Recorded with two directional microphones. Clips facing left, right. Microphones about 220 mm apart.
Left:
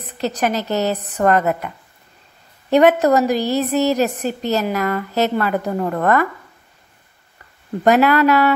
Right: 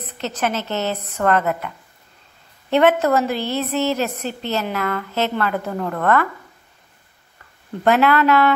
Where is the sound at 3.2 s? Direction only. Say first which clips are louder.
Left 4 dB; 40° left (ahead or behind).